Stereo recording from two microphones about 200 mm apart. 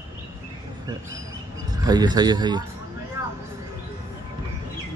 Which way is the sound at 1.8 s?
20° right (ahead or behind).